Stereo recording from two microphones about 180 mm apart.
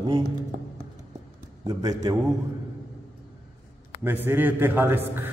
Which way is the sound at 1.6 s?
20° right (ahead or behind).